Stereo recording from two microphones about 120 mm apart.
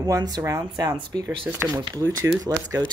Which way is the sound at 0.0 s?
30° right (ahead or behind).